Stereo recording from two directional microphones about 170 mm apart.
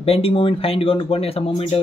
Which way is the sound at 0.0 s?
35° left (ahead or behind).